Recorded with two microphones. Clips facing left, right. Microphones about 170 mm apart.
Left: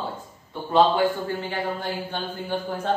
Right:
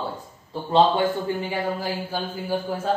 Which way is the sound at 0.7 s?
25° right (ahead or behind).